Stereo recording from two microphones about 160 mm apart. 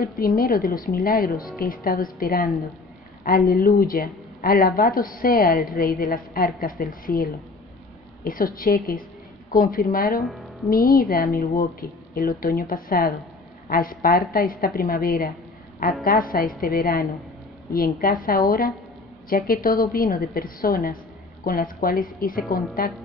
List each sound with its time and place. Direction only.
0.4 s speech: 65° left (ahead or behind)